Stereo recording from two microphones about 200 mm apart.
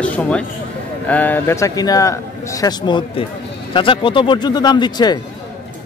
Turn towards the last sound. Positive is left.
turn(degrees=20)  # may be behind; listen again after turning